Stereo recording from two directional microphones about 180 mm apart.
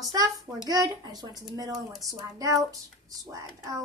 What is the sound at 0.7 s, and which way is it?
A child's voice, 20° right (ahead or behind).